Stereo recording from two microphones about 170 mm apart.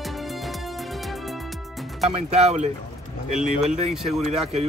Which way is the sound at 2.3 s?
40° right (ahead or behind).